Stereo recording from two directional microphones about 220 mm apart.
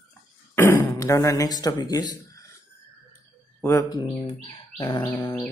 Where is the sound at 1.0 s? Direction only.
15° left (ahead or behind).